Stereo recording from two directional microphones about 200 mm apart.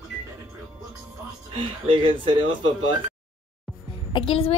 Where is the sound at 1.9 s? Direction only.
25° right (ahead or behind).